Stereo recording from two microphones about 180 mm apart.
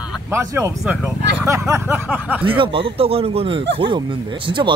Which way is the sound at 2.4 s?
30° right (ahead or behind).